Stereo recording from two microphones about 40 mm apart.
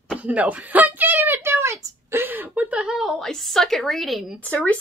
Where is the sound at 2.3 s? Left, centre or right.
Right.